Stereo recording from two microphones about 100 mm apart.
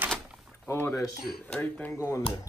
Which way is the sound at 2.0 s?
30° left (ahead or behind).